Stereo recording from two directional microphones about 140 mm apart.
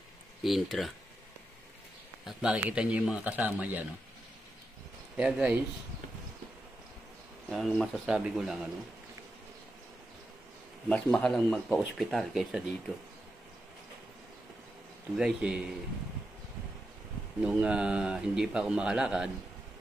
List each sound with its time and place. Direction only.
0.4 s a man's voice: centre (ahead or behind)
2.2 s speech: 5° right (ahead or behind)
5.1 s speech: 10° right (ahead or behind)
7.4 s a man's voice: 5° left (ahead or behind)
10.9 s a man's voice: 10° left (ahead or behind)
15.1 s a man's voice: 5° right (ahead or behind)
17.4 s a man's voice: 5° right (ahead or behind)